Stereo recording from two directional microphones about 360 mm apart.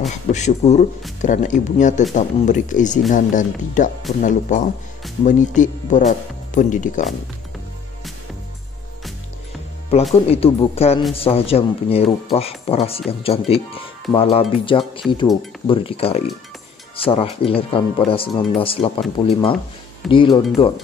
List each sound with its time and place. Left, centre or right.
0.1 s speech: centre
10.2 s speech: centre